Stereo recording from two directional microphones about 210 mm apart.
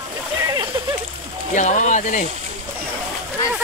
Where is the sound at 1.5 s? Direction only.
35° left (ahead or behind).